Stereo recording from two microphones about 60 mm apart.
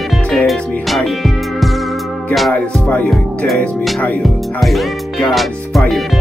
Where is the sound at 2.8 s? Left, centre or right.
Left.